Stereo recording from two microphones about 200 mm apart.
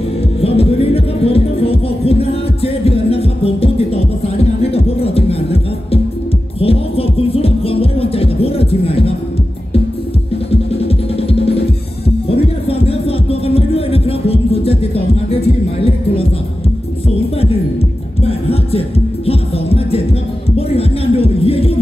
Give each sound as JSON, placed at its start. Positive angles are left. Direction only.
{"t": 0.4, "sound": "music", "side_deg": 30}
{"t": 10.5, "sound": "music", "side_deg": 30}
{"t": 12.6, "sound": "music", "side_deg": 30}
{"t": 18.2, "sound": "music", "side_deg": 30}
{"t": 20.5, "sound": "a sound", "side_deg": 30}